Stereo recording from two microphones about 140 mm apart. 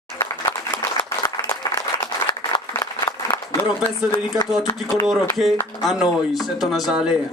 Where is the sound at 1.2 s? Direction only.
20° left (ahead or behind).